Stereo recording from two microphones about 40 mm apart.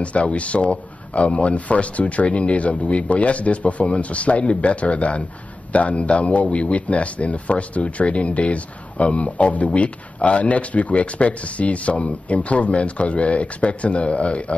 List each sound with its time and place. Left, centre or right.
0.0 s speech: left